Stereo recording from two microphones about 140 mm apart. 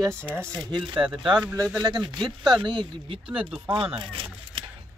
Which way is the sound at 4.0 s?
35° right (ahead or behind).